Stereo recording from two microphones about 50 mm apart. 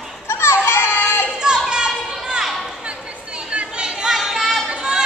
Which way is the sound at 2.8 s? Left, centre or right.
Right.